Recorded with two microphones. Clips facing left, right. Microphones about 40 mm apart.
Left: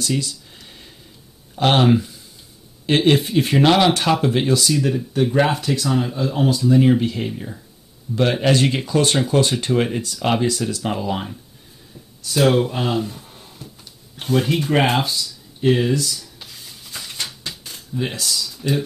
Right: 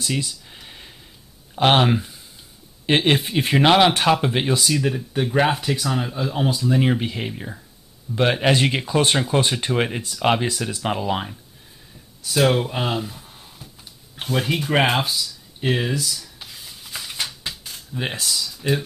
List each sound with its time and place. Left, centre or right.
0.2 s a sound: centre
1.5 s speech: centre
12.2 s speech: centre
14.9 s a sound: centre
17.5 s dishes: centre
17.9 s speech: right
18.2 s speech: centre